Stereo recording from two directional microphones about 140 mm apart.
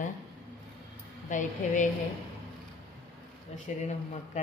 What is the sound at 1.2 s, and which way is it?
Speech, 65° left (ahead or behind).